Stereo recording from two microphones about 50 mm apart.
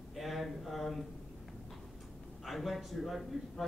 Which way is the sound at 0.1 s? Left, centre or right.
Centre.